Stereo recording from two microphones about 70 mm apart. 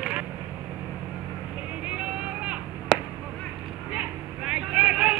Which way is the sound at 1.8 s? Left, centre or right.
Centre.